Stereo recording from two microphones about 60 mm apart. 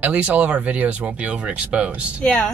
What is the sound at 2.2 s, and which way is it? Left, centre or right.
Speech, centre.